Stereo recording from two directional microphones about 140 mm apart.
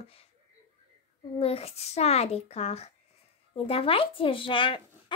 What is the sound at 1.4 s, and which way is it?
A child's voice, 45° left (ahead or behind).